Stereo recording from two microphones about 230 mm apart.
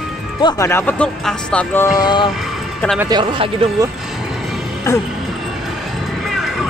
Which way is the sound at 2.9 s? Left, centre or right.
Centre.